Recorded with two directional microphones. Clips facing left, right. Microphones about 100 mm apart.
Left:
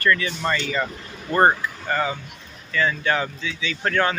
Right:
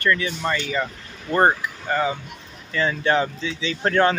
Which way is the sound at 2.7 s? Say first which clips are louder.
Right 2 dB; 30° right (ahead or behind).